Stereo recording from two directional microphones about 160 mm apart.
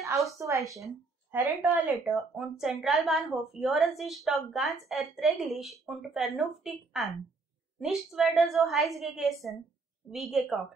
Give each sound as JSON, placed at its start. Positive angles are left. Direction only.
{"t": 0.4, "sound": "a woman's voice", "side_deg": -20}